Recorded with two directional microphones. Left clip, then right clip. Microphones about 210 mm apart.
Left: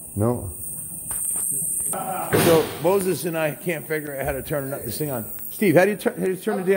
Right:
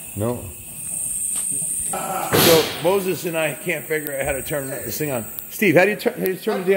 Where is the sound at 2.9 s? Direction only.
10° left (ahead or behind).